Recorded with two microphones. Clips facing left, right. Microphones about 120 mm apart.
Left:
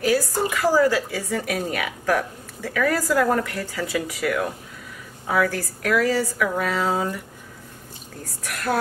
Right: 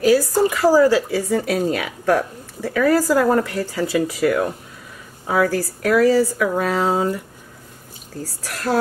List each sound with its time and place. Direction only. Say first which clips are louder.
0.5 s speech: right 4 dB; 30° right (ahead or behind)
8.5 s speech: right 2 dB; 25° right (ahead or behind)